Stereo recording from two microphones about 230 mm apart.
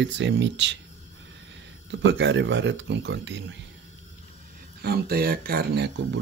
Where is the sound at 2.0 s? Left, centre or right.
Right.